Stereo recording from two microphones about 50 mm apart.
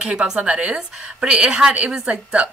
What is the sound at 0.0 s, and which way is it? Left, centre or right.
A woman's voice, centre.